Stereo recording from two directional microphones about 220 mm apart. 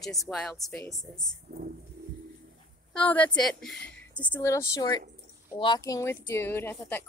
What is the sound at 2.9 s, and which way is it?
A woman's voice, 5° left (ahead or behind).